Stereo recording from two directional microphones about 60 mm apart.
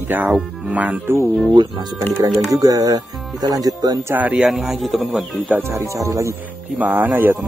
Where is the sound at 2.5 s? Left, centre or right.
Right.